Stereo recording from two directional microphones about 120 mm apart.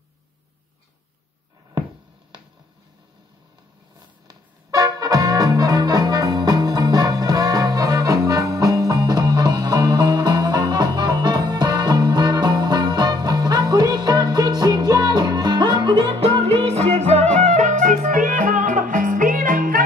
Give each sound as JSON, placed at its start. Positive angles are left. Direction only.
{"t": 4.3, "sound": "music", "side_deg": -30}